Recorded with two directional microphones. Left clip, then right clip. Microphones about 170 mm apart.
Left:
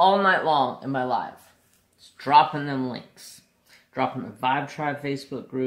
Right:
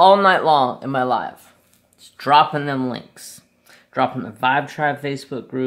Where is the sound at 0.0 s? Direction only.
40° right (ahead or behind).